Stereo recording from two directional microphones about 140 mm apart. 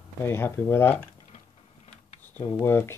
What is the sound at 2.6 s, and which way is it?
Speech, 20° left (ahead or behind).